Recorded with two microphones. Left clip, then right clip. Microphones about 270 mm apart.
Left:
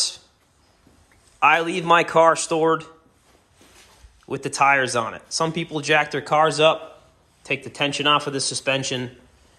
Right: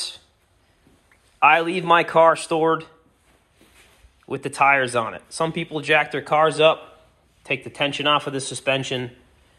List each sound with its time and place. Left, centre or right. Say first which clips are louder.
1.4 s speech: right 1 dB; centre
4.3 s speech: even; centre